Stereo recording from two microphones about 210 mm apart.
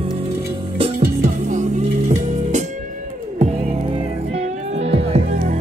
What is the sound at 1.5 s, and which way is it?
Music, 35° right (ahead or behind).